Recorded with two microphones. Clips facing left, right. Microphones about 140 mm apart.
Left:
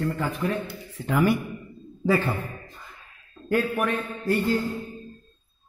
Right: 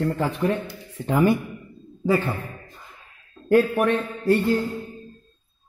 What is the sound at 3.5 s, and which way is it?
Speech, 35° right (ahead or behind).